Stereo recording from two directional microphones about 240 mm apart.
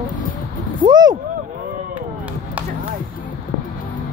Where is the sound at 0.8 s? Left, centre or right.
Centre.